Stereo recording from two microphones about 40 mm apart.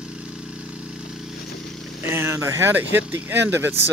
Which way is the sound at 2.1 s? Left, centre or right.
Right.